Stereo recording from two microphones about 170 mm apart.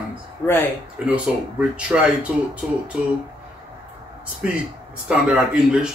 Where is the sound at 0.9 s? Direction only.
5° right (ahead or behind).